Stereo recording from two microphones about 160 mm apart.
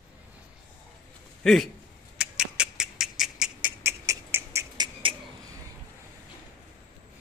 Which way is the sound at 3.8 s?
15° right (ahead or behind).